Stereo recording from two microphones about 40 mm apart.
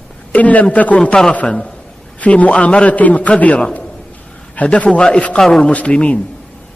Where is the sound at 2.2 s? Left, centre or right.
Left.